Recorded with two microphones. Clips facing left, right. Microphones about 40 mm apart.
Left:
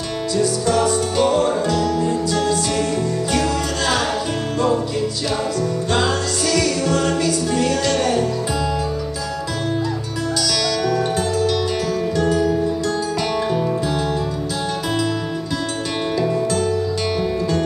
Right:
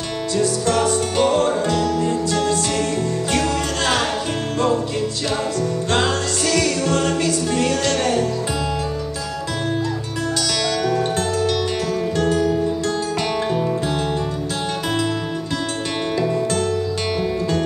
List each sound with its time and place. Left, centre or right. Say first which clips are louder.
0.4 s music: left 1 dB; right
3.3 s music: even; right
5.9 s music: even; right
10.4 s music: left 2 dB; right